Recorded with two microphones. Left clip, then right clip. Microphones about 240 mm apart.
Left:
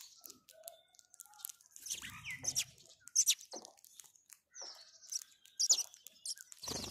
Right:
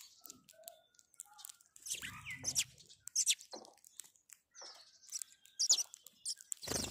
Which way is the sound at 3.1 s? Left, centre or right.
Centre.